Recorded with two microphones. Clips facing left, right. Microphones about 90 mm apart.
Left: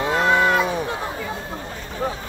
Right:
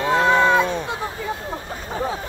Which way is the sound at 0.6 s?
15° left (ahead or behind).